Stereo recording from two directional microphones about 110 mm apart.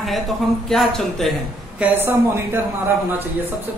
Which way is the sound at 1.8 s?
15° right (ahead or behind).